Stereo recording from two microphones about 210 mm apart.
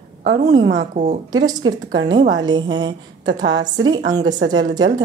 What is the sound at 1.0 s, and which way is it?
Speech, 35° right (ahead or behind).